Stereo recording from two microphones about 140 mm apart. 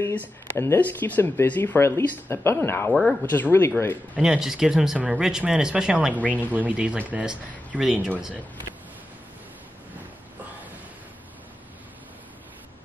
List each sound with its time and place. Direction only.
0.0 s speech: 15° left (ahead or behind)
2.9 s speech: centre (ahead or behind)
3.2 s speech: 15° left (ahead or behind)
4.1 s speech: 5° right (ahead or behind)